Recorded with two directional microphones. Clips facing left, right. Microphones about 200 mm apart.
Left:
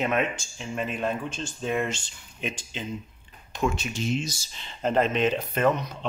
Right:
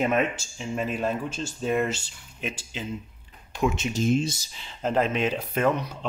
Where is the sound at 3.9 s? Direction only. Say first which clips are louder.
Right 5 dB; 50° right (ahead or behind).